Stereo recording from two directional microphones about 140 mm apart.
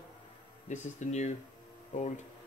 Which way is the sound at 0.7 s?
55° left (ahead or behind).